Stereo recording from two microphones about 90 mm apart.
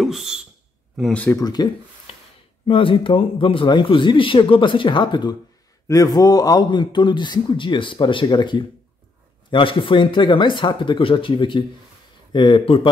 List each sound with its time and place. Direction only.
0.0 s speech: 5° right (ahead or behind)
1.4 s speech: 50° left (ahead or behind)
2.1 s a sound: 90° left
2.6 s speech: 75° left (ahead or behind); by 5.3 s 55° left (ahead or behind)
5.9 s a man's voice: 40° left (ahead or behind)
9.5 s speech: 70° left (ahead or behind)
12.3 s a man's voice: 60° left (ahead or behind); by 12.8 s 75° left (ahead or behind)